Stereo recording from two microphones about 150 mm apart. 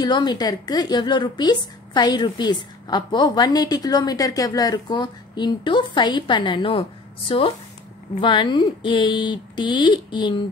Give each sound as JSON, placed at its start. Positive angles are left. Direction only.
{"t": 0.0, "sound": "a woman's voice", "side_deg": 30}